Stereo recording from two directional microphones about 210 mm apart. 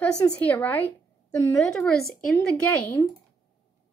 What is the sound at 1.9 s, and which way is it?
Speech, 45° left (ahead or behind).